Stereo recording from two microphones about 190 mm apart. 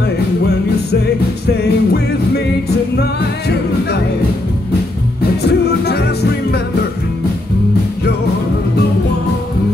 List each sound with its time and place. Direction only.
1.6 s music: 60° left (ahead or behind)
5.4 s music: 60° left (ahead or behind)